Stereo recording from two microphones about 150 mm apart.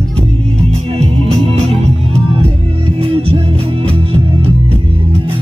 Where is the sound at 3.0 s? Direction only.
40° right (ahead or behind).